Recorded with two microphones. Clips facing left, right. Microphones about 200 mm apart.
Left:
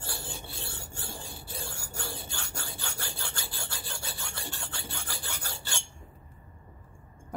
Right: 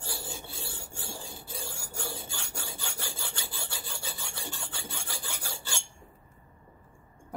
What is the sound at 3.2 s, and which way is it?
Filing, 10° right (ahead or behind).